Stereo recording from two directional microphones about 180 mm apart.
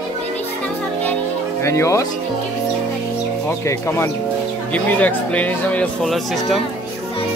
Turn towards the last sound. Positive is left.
turn(degrees=0)  # may be behind; listen again after turning